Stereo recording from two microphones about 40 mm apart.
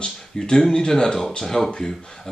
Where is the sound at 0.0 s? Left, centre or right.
Centre.